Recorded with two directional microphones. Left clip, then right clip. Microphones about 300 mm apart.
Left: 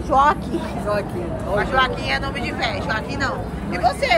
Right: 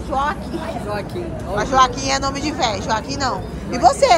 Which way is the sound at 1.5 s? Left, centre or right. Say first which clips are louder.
Right 4 dB; centre.